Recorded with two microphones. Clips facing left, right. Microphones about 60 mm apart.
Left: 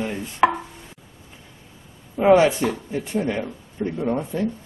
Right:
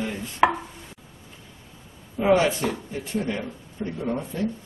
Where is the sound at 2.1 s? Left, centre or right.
Centre.